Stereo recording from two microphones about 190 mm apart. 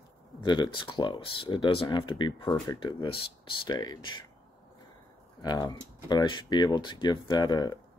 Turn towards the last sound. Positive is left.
turn(degrees=20)  # may be behind; listen again after turning